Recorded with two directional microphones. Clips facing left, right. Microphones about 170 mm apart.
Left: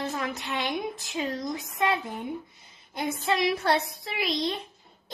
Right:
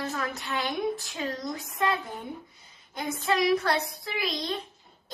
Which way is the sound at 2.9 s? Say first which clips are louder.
Even; 25° left (ahead or behind).